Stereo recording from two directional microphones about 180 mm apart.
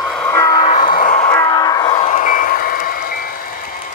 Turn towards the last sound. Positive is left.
turn(degrees=55)  # may be behind; listen again after turning